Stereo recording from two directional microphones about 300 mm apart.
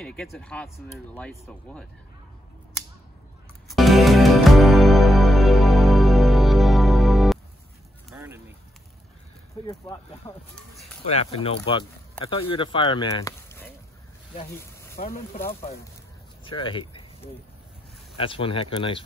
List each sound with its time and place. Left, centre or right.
0.0 s speech: centre
3.6 s music: centre
8.1 s a sound: centre
9.7 s speech: centre
15.0 s speech: left
16.4 s speech: centre
18.1 s speech: centre